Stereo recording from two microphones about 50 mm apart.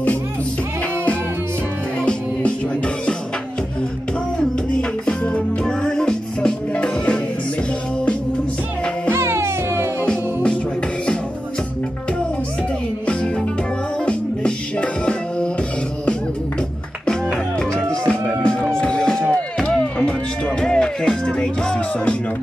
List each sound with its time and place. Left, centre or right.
5.0 s music: left
9.1 s music: right
10.0 s music: centre
13.0 s music: left
17.0 s music: centre